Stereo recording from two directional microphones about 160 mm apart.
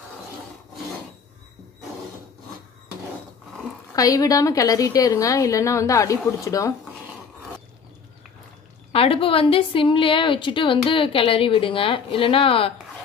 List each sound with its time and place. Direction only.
3.9 s a woman's voice: 20° left (ahead or behind)
8.9 s a woman's voice: 35° left (ahead or behind)